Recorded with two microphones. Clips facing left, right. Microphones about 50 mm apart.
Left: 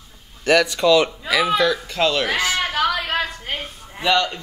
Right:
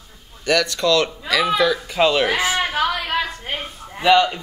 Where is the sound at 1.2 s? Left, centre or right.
Centre.